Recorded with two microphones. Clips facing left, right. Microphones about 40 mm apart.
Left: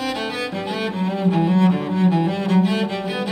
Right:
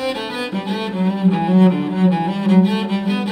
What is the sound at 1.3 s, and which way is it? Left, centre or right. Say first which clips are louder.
Cello: right 2 dB; centre.